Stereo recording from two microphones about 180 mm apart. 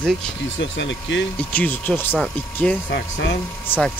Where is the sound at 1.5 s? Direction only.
10° left (ahead or behind).